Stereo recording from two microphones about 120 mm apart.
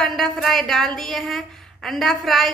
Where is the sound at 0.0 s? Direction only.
5° left (ahead or behind).